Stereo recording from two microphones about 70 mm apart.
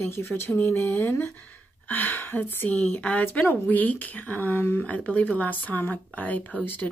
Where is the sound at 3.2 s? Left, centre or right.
Left.